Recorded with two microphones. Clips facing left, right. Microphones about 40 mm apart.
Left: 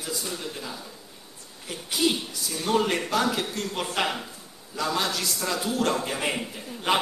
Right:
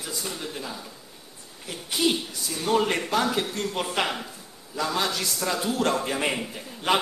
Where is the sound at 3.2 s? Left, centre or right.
Centre.